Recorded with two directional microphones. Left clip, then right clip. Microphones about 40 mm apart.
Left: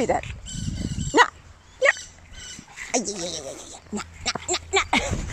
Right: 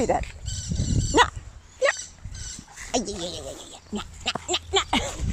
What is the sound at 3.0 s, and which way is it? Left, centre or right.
Speech, centre.